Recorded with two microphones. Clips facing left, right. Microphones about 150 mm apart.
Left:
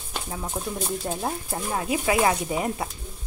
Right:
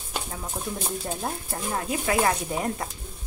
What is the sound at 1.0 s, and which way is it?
Speech, 5° left (ahead or behind).